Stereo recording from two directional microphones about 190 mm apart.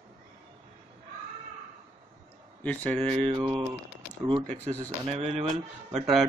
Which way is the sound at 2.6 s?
5° left (ahead or behind).